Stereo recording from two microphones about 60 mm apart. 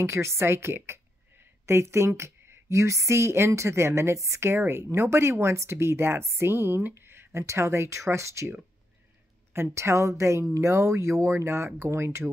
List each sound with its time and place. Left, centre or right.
0.0 s a woman's voice: right